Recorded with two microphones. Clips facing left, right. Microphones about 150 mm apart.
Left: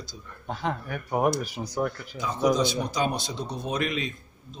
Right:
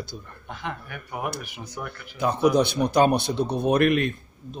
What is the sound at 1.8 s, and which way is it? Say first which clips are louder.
A man's voice: right 5 dB; 60° right (ahead or behind).